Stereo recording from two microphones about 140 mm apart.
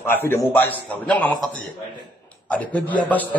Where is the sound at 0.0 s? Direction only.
15° left (ahead or behind).